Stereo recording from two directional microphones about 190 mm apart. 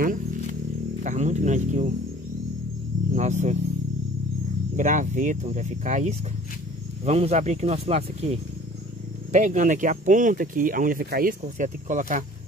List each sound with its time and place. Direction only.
1.0 s speech: 40° right (ahead or behind)
3.2 s speech: 40° right (ahead or behind)
4.7 s speech: 40° right (ahead or behind)